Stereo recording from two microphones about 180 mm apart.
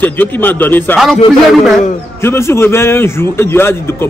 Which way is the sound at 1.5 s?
Centre (ahead or behind).